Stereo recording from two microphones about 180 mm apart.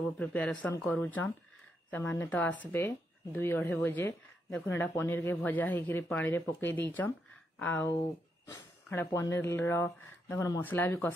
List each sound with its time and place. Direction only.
0.2 s speech: 10° left (ahead or behind)